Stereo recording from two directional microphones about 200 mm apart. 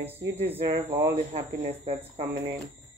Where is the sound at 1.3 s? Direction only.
30° right (ahead or behind).